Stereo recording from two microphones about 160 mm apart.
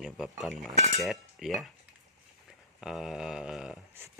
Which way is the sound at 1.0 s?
Centre (ahead or behind).